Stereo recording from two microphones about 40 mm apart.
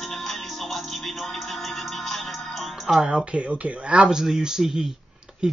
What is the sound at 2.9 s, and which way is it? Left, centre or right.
Speech, centre.